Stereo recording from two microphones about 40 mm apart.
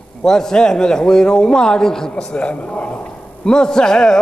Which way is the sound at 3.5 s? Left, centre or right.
Centre.